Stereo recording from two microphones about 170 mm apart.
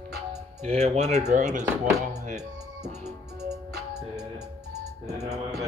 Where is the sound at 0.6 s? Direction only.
40° right (ahead or behind).